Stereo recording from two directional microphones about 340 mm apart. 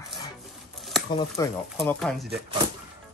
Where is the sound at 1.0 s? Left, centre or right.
Centre.